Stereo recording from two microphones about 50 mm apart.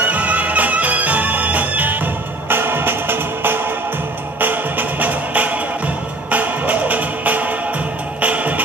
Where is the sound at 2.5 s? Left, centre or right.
Right.